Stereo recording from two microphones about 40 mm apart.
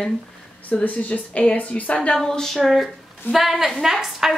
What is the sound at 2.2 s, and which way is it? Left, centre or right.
A woman's voice, centre.